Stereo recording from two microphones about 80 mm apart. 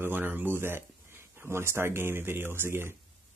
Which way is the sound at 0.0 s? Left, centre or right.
Right.